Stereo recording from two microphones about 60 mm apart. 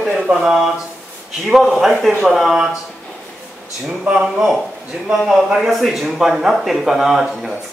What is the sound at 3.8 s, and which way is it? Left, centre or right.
A man's voice, centre.